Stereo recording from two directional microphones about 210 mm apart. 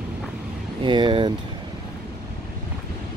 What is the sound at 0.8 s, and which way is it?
Speech, 25° right (ahead or behind).